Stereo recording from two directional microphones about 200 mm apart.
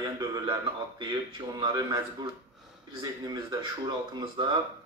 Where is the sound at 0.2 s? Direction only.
20° right (ahead or behind).